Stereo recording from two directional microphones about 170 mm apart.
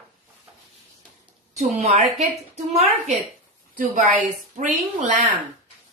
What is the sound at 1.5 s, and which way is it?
A woman's voice, 40° right (ahead or behind).